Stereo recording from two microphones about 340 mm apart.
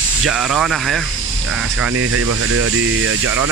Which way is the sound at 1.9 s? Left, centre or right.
Right.